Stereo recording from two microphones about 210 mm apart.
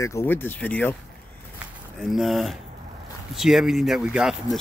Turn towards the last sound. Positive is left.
turn(degrees=-5)  # may be behind; listen again after turning